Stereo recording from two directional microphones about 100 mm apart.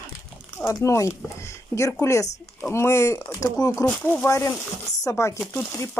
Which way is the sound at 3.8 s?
20° left (ahead or behind).